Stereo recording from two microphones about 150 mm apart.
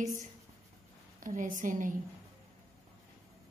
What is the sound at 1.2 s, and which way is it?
Speech, 60° right (ahead or behind).